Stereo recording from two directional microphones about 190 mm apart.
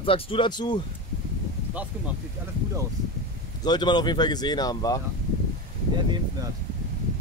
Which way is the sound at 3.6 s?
20° left (ahead or behind).